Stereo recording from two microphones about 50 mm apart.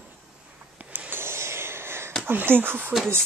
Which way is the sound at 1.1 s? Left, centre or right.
Right.